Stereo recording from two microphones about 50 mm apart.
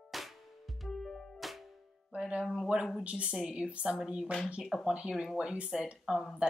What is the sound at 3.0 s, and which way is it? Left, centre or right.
Speech, centre.